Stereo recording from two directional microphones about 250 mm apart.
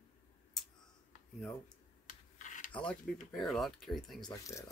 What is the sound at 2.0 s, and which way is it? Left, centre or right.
Rub, left.